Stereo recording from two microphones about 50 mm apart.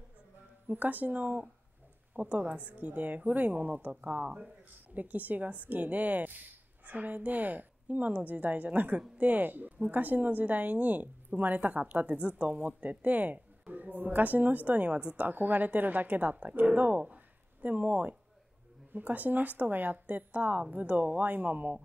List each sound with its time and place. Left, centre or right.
0.7 s a woman's voice: right
17.1 s a sound: right
18.9 s a woman's voice: right